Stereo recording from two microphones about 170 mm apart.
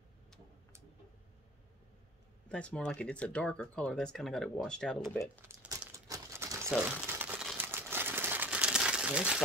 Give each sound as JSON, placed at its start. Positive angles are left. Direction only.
{"t": 2.5, "sound": "speech", "side_deg": 5}
{"t": 5.4, "sound": "crumpling", "side_deg": -15}